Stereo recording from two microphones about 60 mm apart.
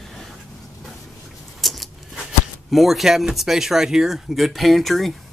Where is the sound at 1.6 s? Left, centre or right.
Centre.